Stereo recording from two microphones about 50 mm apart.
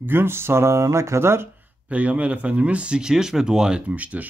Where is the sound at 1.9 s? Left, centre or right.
Right.